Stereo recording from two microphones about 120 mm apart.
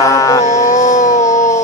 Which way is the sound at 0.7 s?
25° left (ahead or behind).